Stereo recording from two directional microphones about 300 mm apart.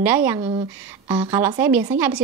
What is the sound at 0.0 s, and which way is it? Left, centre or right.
Speech, centre.